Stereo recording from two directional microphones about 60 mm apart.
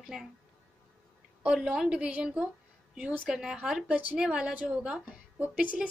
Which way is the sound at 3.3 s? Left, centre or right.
Centre.